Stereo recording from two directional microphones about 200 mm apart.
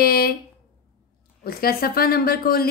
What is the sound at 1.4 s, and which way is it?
A woman's voice, 50° left (ahead or behind).